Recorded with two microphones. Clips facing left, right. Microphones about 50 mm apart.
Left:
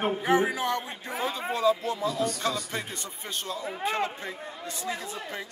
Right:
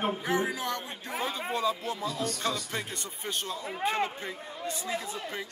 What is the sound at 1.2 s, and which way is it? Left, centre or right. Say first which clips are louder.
Speech: left 3 dB; centre.